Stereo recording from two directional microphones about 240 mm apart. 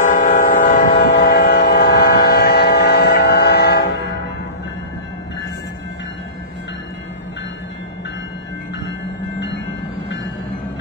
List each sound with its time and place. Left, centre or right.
0.0 s train: left